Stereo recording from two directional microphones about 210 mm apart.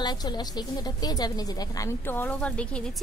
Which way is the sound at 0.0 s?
20° left (ahead or behind).